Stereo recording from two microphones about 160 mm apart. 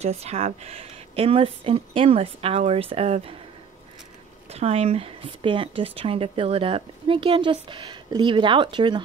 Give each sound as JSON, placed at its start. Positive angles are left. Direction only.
{"t": 0.0, "sound": "speech", "side_deg": -40}
{"t": 4.5, "sound": "speech", "side_deg": -40}